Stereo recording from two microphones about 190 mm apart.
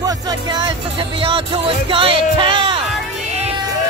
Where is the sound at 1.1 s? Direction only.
30° right (ahead or behind).